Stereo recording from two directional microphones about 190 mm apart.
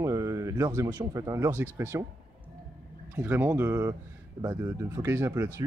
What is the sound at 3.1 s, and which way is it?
Speech, 10° right (ahead or behind).